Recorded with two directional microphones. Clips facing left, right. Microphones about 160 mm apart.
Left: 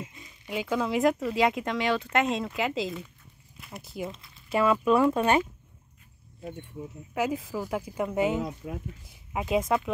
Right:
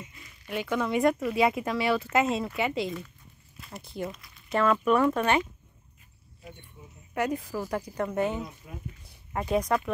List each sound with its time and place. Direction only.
0.5 s speech: 10° left (ahead or behind)
7.2 s speech: 5° left (ahead or behind)
8.6 s speech: 70° left (ahead or behind)
9.0 s speech: 5° left (ahead or behind)